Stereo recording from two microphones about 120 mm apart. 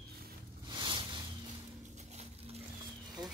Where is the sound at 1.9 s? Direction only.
60° right (ahead or behind).